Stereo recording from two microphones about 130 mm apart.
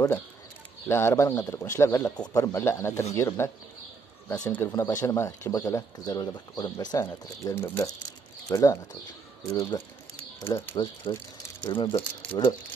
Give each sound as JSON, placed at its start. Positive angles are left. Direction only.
{"t": 0.8, "sound": "speech", "side_deg": 20}
{"t": 4.6, "sound": "speech", "side_deg": 25}
{"t": 11.6, "sound": "speech", "side_deg": 35}